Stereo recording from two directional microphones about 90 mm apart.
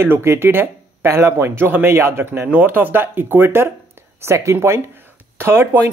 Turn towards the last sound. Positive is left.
turn(degrees=-25)  # may be behind; listen again after turning